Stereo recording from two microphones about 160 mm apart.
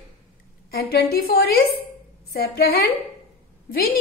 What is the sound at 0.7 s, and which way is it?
A woman's voice, 75° left (ahead or behind).